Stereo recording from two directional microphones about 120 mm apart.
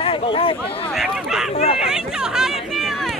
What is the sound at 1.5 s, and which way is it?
Speech, 55° left (ahead or behind).